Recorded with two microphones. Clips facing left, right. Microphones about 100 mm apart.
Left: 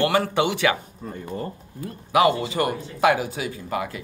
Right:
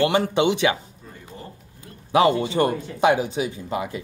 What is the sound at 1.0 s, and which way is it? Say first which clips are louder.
Speech: left 13 dB; 55° left (ahead or behind).